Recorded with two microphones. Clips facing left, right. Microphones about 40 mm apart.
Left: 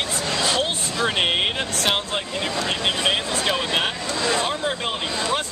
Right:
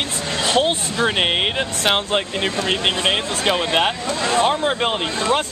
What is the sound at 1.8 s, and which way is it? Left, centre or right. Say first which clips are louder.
Speech: right 5 dB; right.